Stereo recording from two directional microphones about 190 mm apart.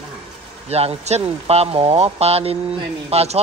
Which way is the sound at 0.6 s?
35° right (ahead or behind).